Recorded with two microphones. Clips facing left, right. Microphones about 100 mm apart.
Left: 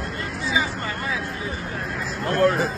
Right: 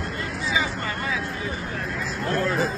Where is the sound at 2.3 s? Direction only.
60° left (ahead or behind).